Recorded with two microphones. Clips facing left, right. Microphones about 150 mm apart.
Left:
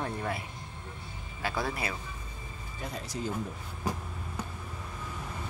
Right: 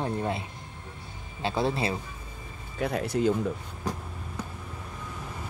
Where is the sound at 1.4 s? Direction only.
25° right (ahead or behind).